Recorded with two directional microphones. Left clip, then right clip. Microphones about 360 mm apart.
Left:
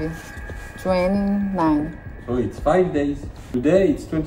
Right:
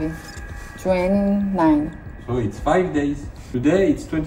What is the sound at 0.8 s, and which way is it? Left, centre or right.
Speech, centre.